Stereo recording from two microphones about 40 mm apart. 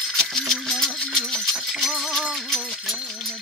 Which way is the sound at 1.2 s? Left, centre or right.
Centre.